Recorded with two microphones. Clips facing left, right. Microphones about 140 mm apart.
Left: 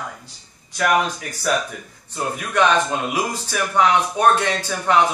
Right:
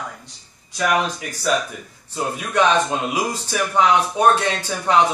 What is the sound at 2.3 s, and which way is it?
A man's voice, 15° right (ahead or behind).